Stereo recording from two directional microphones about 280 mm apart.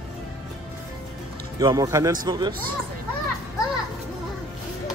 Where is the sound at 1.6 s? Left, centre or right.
Centre.